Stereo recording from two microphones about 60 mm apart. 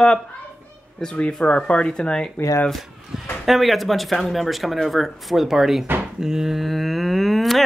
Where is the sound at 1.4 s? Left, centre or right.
Centre.